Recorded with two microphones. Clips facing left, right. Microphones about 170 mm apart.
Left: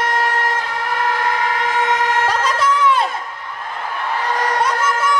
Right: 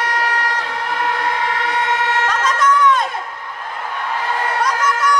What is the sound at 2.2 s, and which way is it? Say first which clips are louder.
Music: left 1 dB; 35° left (ahead or behind).